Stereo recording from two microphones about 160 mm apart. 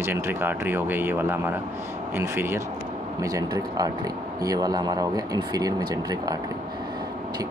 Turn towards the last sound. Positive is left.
turn(degrees=-25)  # may be behind; listen again after turning